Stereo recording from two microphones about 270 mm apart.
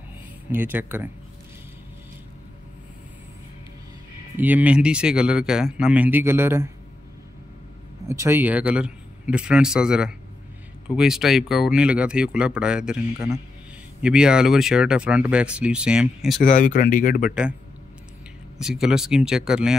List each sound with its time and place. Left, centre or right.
0.5 s speech: centre
4.4 s speech: centre
8.1 s speech: centre
16.4 s speech: left
17.3 s speech: centre
18.6 s speech: centre